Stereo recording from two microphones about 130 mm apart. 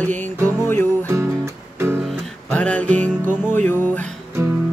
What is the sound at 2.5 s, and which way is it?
Music, 10° left (ahead or behind).